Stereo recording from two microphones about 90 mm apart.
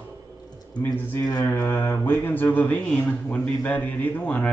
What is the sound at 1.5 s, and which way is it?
Speech, 20° left (ahead or behind).